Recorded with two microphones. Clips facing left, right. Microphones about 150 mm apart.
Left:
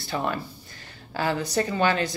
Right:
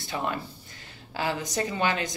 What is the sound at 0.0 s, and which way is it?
Speech, 20° right (ahead or behind).